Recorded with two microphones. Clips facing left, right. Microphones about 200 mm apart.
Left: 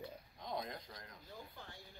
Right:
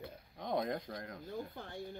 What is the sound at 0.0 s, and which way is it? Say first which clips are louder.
Speech: right 4 dB; 55° right (ahead or behind).